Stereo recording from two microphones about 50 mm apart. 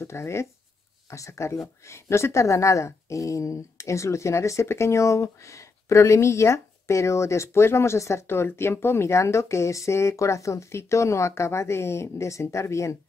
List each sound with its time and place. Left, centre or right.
0.0 s speech: left
1.1 s speech: left
1.9 s speech: left
8.3 s speech: left